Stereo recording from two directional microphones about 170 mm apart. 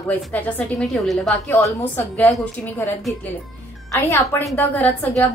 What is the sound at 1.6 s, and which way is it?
A woman's voice, 10° left (ahead or behind).